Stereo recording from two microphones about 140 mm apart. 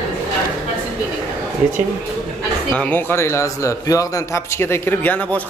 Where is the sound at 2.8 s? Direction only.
15° left (ahead or behind).